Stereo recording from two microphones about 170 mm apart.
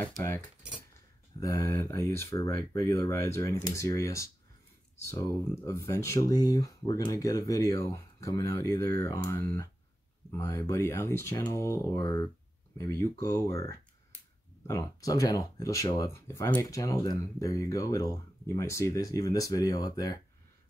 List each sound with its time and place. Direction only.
0.0 s speech: 10° left (ahead or behind)
1.4 s speech: 15° left (ahead or behind)